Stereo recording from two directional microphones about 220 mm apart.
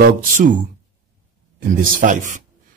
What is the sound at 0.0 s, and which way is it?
Speech, 40° right (ahead or behind).